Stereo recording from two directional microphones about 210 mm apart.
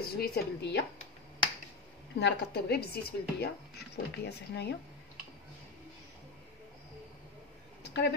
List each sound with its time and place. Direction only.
0.0 s a woman's voice: 50° left (ahead or behind)
2.1 s a woman's voice: 50° left (ahead or behind)
7.8 s a sound: 55° left (ahead or behind)